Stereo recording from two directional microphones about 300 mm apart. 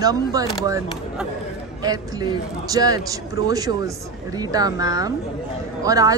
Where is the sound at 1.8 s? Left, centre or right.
Centre.